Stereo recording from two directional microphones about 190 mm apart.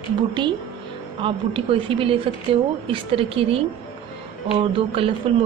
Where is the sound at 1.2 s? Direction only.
25° right (ahead or behind).